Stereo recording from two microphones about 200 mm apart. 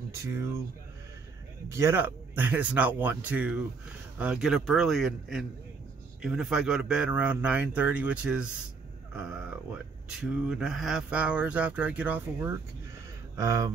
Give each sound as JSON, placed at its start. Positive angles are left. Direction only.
{"t": 0.2, "sound": "speech", "side_deg": -15}
{"t": 1.7, "sound": "speech", "side_deg": -15}
{"t": 10.5, "sound": "speech", "side_deg": -5}